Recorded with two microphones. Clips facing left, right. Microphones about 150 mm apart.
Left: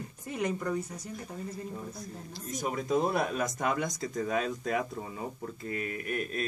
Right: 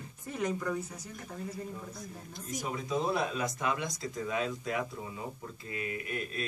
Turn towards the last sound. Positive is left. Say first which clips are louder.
# left 3 dB
turn(degrees=50)  # may be behind; listen again after turning